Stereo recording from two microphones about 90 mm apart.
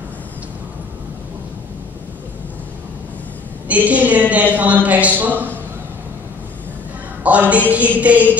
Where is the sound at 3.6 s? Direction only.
15° right (ahead or behind).